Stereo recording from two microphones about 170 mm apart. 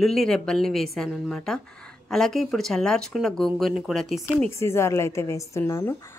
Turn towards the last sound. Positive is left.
turn(degrees=15)  # may be behind; listen again after turning